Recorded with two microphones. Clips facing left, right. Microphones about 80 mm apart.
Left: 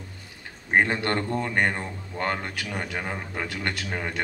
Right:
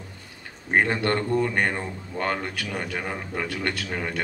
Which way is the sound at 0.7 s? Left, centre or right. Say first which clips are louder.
Right 1 dB; left.